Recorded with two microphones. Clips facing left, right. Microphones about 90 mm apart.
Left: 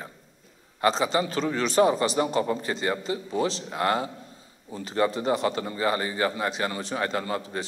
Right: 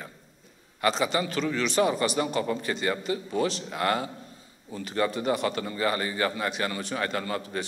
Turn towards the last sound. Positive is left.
turn(degrees=25)  # may be behind; listen again after turning